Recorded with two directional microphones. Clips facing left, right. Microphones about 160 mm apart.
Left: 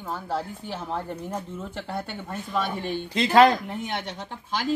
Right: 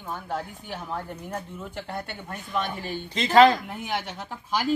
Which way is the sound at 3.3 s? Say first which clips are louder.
Right 1 dB; 15° left (ahead or behind).